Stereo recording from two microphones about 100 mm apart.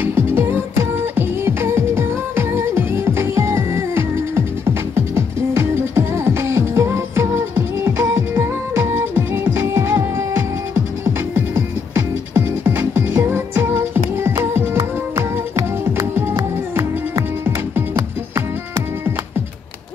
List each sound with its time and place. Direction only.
0.0 s music: 25° right (ahead or behind)
17.9 s music: 30° right (ahead or behind)